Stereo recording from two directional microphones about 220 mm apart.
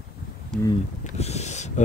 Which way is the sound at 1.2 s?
30° left (ahead or behind).